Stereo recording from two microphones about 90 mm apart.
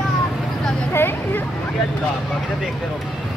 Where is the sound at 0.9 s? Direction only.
25° left (ahead or behind).